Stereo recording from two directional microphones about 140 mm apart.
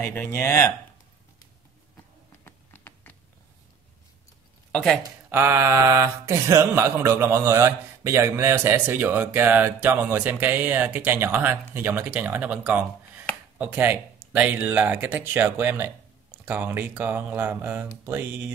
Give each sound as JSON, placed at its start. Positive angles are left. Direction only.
{"t": 0.0, "sound": "speech", "side_deg": 15}
{"t": 2.4, "sound": "a sound", "side_deg": 15}
{"t": 5.3, "sound": "speech", "side_deg": -15}